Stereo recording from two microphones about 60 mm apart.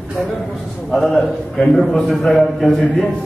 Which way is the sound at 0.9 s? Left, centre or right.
Centre.